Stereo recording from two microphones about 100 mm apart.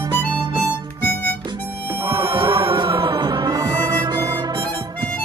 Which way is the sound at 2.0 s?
40° right (ahead or behind).